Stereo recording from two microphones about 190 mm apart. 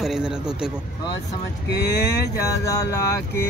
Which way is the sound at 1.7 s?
60° left (ahead or behind).